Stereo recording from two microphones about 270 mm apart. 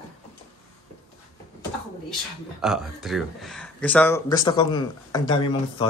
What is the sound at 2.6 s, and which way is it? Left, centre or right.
Speech, centre.